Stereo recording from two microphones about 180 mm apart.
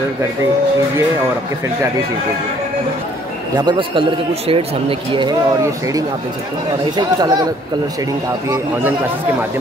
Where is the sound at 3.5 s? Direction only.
25° right (ahead or behind).